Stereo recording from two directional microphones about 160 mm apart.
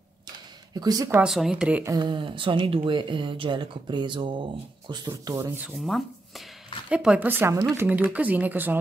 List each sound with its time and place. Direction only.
0.7 s speech: 20° right (ahead or behind)
1.2 s speech: 5° right (ahead or behind)
1.8 s speech: 25° right (ahead or behind)
5.9 s speech: centre (ahead or behind)